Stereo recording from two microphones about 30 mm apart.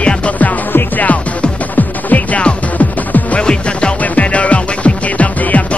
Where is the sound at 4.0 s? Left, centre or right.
Left.